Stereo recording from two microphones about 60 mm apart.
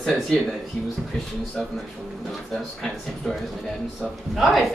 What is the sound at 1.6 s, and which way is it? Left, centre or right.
Speech, centre.